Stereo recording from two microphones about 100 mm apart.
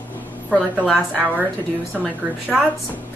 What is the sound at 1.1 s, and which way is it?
Speech, 20° right (ahead or behind).